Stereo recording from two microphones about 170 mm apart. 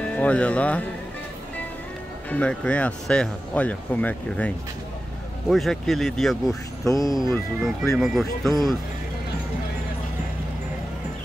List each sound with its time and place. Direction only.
0.0 s speech: 5° left (ahead or behind)
2.3 s speech: 5° left (ahead or behind)
5.5 s speech: centre (ahead or behind)
6.9 s speech: 20° left (ahead or behind)
7.2 s speech: centre (ahead or behind)